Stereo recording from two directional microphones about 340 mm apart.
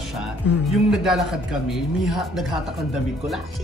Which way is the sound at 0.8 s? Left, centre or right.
Centre.